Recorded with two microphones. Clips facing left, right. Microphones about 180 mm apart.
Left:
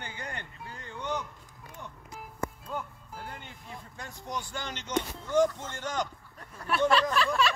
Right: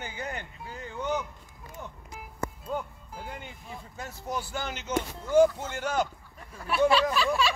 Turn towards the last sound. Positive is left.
turn(degrees=-5)  # may be behind; listen again after turning